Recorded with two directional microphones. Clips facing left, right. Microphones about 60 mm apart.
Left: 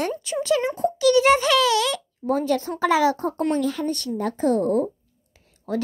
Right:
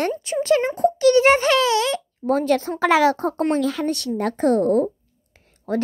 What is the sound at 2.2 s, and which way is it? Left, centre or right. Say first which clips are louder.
Speech: right 3 dB; right.